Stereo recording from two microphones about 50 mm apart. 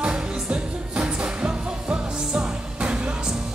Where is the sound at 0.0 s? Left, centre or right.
Right.